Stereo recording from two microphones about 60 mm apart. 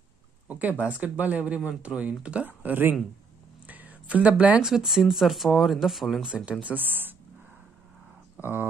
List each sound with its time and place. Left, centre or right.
0.5 s speech: right
3.6 s a sound: right
4.6 s speech: centre
6.2 s speech: centre; by 7.2 s right
8.4 s speech: right